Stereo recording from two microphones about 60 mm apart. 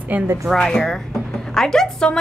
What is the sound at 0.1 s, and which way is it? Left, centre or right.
Speech, right.